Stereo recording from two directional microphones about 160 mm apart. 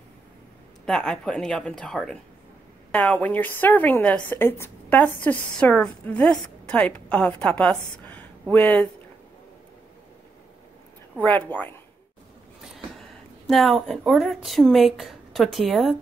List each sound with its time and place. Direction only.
0.8 s a woman's voice: centre (ahead or behind)
8.1 s a sound: 10° left (ahead or behind)
11.2 s a woman's voice: 10° left (ahead or behind)
13.5 s speech: centre (ahead or behind)